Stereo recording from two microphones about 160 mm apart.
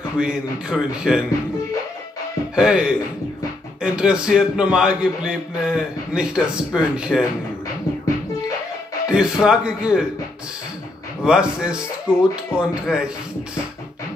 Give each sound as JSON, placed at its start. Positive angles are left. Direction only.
{"t": 0.2, "sound": "a man's voice", "side_deg": -5}
{"t": 2.5, "sound": "a man's voice", "side_deg": -5}
{"t": 9.1, "sound": "a man's voice", "side_deg": -5}
{"t": 11.2, "sound": "a man's voice", "side_deg": -5}